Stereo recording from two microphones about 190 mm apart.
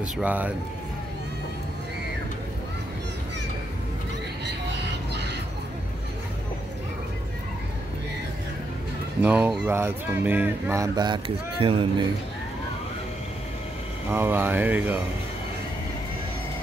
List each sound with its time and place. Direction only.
0.0 s speech: 10° right (ahead or behind)
4.5 s vehicle: 60° right (ahead or behind)
9.2 s speech: 5° right (ahead or behind); by 11.9 s 30° right (ahead or behind)
14.1 s speech: 10° right (ahead or behind)